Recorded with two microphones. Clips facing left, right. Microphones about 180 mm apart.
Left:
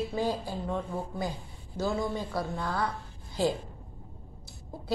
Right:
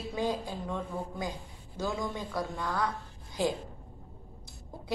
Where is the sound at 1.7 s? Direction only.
10° left (ahead or behind).